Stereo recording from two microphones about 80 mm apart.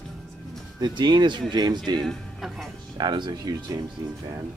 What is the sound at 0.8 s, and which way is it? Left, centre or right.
Speech, right.